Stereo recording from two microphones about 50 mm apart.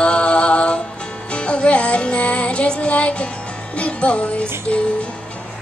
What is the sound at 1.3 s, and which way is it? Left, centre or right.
Music, left.